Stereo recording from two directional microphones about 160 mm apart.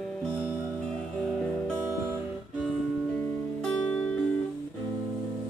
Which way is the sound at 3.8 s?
5° left (ahead or behind).